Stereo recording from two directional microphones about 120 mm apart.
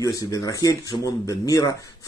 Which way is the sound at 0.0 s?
30° left (ahead or behind).